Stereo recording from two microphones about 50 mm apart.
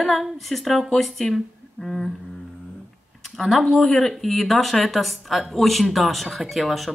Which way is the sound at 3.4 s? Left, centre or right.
Centre.